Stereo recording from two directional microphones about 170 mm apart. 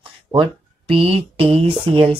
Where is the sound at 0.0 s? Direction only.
30° right (ahead or behind).